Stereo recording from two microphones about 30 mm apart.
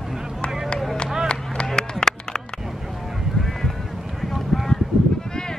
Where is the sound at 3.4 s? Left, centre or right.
Centre.